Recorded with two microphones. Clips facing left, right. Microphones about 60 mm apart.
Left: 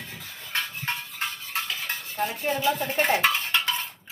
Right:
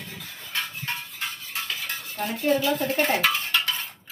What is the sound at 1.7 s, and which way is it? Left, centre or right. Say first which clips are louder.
Cutlery: even; centre.